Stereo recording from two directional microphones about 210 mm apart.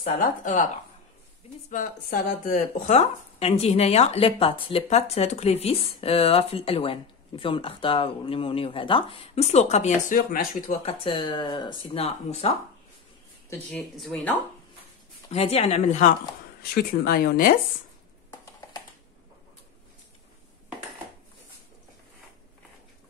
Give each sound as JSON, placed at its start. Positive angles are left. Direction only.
{"t": 0.0, "sound": "speech", "side_deg": 40}
{"t": 1.7, "sound": "speech", "side_deg": 45}
{"t": 13.5, "sound": "speech", "side_deg": 5}
{"t": 15.2, "sound": "speech", "side_deg": 30}
{"t": 16.7, "sound": "speech", "side_deg": 45}